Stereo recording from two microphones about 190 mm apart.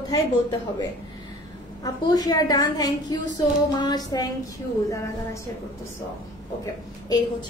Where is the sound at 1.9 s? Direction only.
20° left (ahead or behind).